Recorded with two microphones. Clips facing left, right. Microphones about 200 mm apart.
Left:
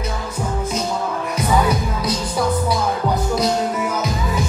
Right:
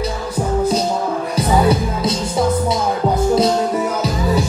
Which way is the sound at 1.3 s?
30° right (ahead or behind).